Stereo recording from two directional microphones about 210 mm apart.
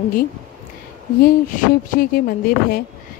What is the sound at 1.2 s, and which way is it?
Speech, 45° left (ahead or behind).